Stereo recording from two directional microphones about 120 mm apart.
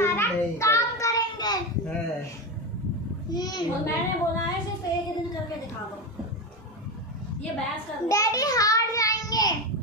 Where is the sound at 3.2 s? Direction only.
35° left (ahead or behind).